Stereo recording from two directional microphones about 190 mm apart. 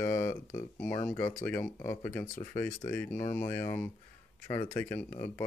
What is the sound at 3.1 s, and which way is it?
Speech, 40° left (ahead or behind).